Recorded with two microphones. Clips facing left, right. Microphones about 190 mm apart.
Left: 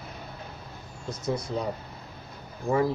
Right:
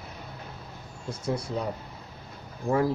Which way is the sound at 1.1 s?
10° right (ahead or behind).